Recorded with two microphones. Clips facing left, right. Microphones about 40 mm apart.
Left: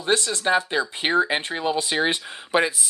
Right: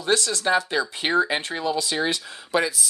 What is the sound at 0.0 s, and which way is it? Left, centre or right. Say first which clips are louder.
Speech: even; left.